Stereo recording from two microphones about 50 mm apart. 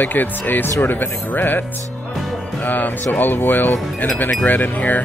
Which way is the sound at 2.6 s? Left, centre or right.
Left.